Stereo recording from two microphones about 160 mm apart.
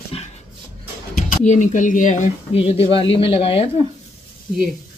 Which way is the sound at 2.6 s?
35° left (ahead or behind).